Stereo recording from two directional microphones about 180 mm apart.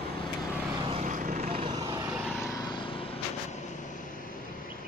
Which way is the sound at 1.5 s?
30° right (ahead or behind).